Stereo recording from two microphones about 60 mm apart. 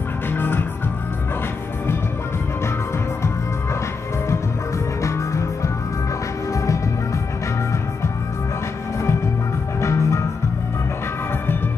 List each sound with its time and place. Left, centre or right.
0.3 s music: left
5.0 s music: left
9.8 s music: left